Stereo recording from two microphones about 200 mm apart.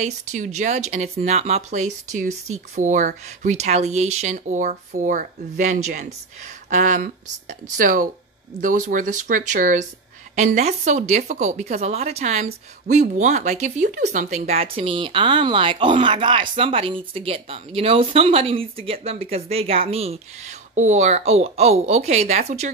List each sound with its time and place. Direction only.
0.0 s speech: 35° right (ahead or behind)